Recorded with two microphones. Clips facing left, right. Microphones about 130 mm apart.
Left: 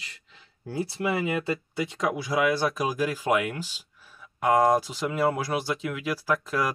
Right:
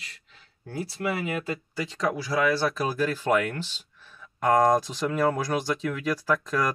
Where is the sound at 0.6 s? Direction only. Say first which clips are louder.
Left 3 dB; 30° left (ahead or behind).